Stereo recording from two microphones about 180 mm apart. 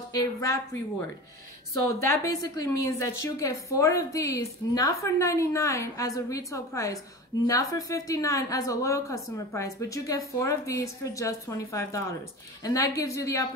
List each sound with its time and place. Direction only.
0.1 s a woman's voice: 20° left (ahead or behind)
2.0 s a woman's voice: 15° left (ahead or behind)